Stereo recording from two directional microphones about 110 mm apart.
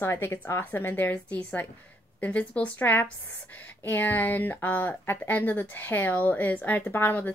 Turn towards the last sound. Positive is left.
turn(degrees=15)  # may be behind; listen again after turning